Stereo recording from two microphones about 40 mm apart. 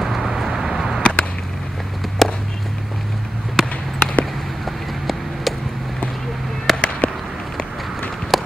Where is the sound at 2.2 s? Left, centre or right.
Centre.